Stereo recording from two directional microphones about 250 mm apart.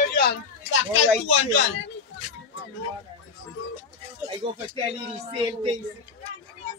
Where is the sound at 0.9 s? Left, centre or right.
Left.